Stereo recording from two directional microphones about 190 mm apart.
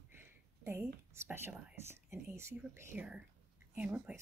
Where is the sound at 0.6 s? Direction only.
15° right (ahead or behind).